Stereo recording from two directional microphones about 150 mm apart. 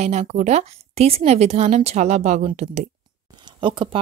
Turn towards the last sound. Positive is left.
turn(degrees=-35)  # may be behind; listen again after turning